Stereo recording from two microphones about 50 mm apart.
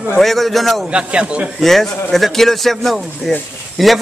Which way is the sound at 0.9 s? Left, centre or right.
Right.